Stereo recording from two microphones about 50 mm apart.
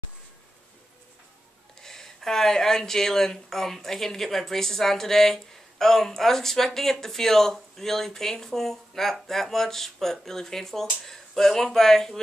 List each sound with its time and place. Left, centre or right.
1.8 s speech: centre